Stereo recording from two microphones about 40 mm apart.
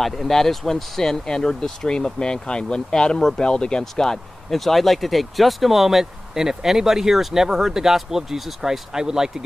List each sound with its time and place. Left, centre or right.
0.0 s speech: centre
3.9 s speech: centre